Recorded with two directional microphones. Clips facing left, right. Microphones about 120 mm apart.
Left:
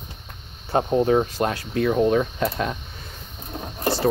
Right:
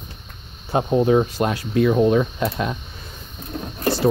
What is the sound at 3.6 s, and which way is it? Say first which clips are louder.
Vehicle: right 2 dB; 25° left (ahead or behind).